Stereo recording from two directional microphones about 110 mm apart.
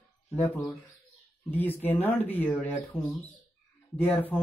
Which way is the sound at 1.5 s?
15° left (ahead or behind).